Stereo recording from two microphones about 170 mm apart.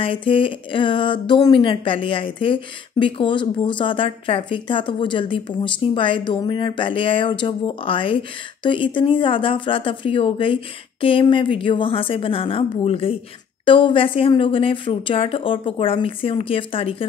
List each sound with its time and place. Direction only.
0.0 s speech: 30° left (ahead or behind)